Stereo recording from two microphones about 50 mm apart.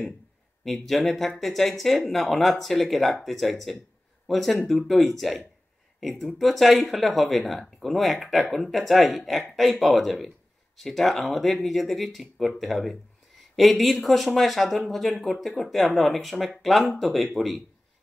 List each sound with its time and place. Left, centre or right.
0.7 s speech: centre